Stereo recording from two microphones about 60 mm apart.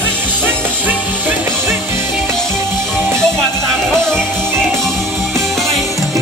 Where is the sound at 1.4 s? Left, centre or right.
Right.